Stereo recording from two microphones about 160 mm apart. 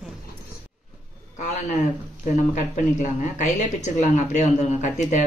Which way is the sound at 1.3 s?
50° left (ahead or behind).